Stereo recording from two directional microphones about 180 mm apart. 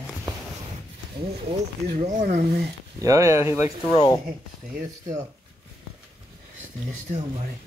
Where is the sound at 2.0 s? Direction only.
40° right (ahead or behind).